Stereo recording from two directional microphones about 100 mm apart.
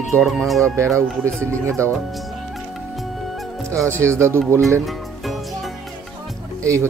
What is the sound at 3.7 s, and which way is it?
Speech, 30° right (ahead or behind).